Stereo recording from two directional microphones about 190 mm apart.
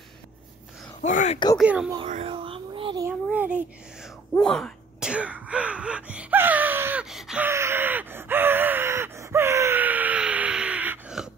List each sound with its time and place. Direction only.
1.0 s speech: 40° left (ahead or behind)
1.6 s speech: 5° right (ahead or behind)
2.0 s speech: 40° right (ahead or behind)
2.3 s a sound: 30° right (ahead or behind)
3.1 s a sound: 5° right (ahead or behind)
4.4 s throat clearing: 5° left (ahead or behind)